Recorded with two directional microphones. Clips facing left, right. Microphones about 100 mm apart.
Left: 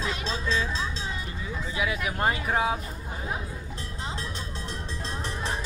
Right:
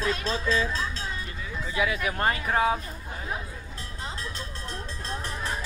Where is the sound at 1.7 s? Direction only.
10° left (ahead or behind).